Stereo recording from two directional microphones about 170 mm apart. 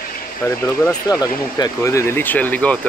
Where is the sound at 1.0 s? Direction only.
20° left (ahead or behind).